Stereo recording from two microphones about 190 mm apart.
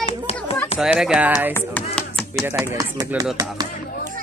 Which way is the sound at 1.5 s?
10° left (ahead or behind).